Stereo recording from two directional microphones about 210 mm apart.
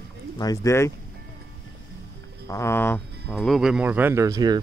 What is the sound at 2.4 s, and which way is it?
Speech, 15° left (ahead or behind).